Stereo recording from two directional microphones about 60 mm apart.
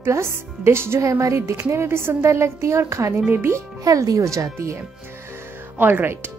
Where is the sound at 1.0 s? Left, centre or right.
Right.